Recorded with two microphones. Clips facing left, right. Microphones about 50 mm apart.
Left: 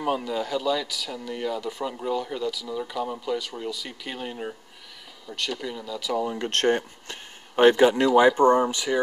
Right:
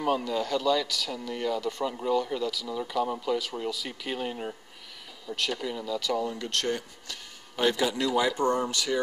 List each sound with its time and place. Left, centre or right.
0.0 s speech: centre
6.2 s speech: left